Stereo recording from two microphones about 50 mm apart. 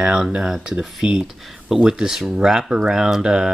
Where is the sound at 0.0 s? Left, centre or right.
Centre.